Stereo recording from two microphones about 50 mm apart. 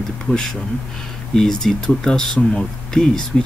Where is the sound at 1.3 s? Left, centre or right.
Centre.